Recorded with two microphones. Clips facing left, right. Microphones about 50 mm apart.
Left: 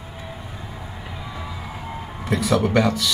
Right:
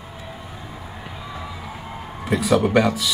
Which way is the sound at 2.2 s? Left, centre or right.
Centre.